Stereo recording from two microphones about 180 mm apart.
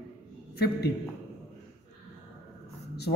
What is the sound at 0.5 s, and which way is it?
Speech, 60° left (ahead or behind).